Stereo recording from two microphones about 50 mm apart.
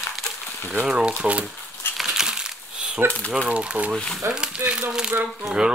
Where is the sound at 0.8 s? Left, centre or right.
Centre.